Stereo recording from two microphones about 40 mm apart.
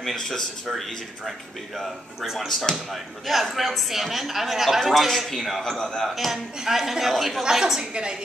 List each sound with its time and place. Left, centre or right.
0.0 s speech: centre
0.7 s a man's voice: centre
2.3 s speech: centre
2.9 s a man's voice: centre
5.6 s speech: centre
6.0 s a man's voice: centre
7.8 s a woman's voice: right